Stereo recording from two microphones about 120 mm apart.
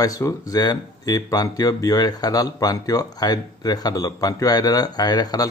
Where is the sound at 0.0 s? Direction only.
30° left (ahead or behind).